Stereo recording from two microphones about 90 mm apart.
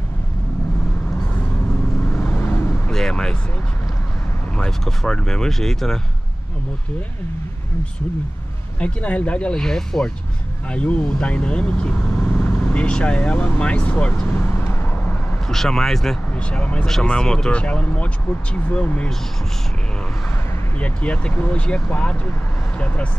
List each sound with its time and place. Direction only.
2.3 s vehicle: 25° left (ahead or behind)
2.7 s vehicle: 5° left (ahead or behind)
4.6 s speech: 5° left (ahead or behind)
8.7 s speech: 15° left (ahead or behind)
12.4 s speech: 20° left (ahead or behind)
15.5 s speech: 5° left (ahead or behind)
20.8 s speech: 15° left (ahead or behind)